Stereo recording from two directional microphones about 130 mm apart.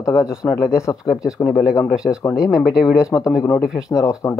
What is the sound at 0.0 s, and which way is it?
Speech, 25° left (ahead or behind).